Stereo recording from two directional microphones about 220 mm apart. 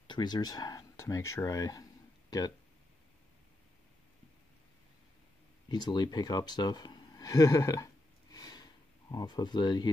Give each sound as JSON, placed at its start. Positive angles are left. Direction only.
{"t": 0.0, "sound": "speech", "side_deg": 20}
{"t": 5.7, "sound": "speech", "side_deg": 20}